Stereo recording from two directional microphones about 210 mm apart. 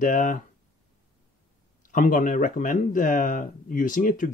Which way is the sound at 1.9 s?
40° left (ahead or behind).